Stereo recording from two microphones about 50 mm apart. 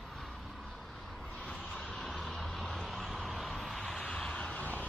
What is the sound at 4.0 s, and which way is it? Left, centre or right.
Vehicle, centre.